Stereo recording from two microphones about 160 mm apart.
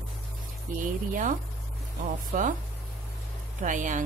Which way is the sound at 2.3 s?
55° right (ahead or behind).